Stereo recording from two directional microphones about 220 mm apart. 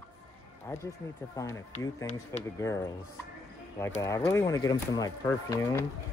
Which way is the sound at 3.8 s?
15° left (ahead or behind).